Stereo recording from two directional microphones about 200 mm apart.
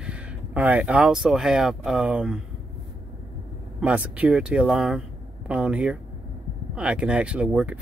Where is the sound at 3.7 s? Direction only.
5° right (ahead or behind).